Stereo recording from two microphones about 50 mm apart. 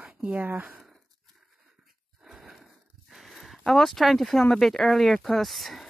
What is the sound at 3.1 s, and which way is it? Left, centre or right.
Speech, centre.